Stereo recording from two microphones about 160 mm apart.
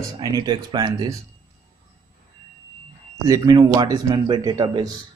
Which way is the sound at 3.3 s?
25° right (ahead or behind).